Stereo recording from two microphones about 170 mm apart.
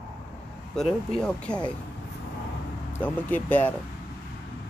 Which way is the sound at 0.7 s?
5° left (ahead or behind).